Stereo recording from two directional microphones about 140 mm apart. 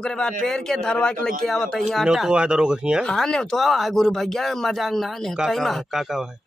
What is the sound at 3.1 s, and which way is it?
Speech, 5° left (ahead or behind).